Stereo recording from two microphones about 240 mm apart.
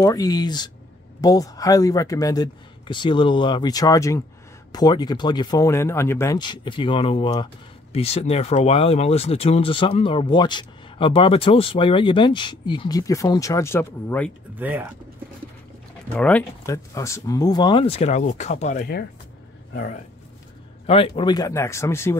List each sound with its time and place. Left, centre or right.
0.0 s speech: centre
14.6 s speech: centre
16.1 s speech: centre; by 20.0 s left
20.8 s a man's voice: left